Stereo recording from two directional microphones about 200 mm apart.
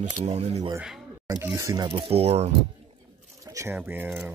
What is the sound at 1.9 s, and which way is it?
Speech, 30° right (ahead or behind).